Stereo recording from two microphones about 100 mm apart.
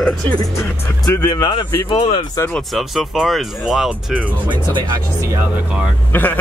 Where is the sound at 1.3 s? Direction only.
50° left (ahead or behind).